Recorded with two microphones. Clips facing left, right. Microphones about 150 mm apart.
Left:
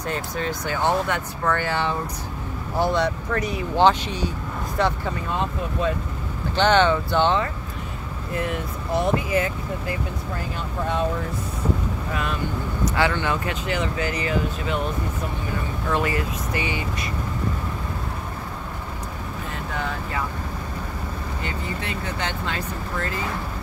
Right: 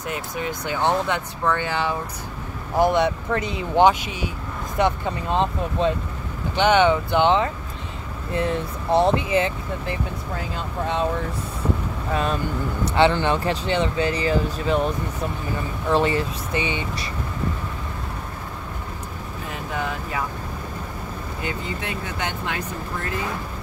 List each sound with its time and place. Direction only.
0.1 s speech: 15° right (ahead or behind)
8.3 s speech: 30° right (ahead or behind)
12.1 s speech: 30° right (ahead or behind)
15.9 s speech: 30° right (ahead or behind)
21.5 s speech: 15° right (ahead or behind)